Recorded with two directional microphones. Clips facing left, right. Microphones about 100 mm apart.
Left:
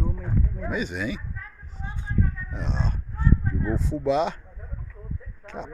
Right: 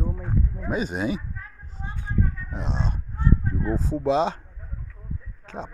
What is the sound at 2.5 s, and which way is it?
Speech, 30° right (ahead or behind).